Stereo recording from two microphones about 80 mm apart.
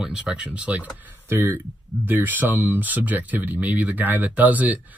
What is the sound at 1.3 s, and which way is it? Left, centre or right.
Speech, right.